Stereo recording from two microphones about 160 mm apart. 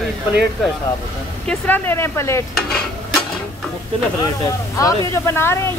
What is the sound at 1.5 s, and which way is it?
Speech, 15° left (ahead or behind).